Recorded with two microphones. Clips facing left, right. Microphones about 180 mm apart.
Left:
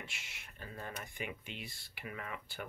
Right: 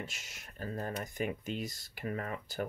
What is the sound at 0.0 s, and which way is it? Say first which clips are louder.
Speech: right 6 dB; 40° right (ahead or behind).